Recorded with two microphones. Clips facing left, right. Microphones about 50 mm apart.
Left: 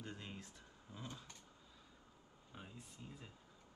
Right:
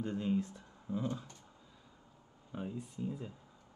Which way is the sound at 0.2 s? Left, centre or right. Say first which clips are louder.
Right 18 dB; centre.